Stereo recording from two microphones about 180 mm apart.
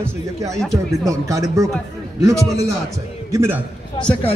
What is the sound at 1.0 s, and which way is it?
Speech, 20° right (ahead or behind).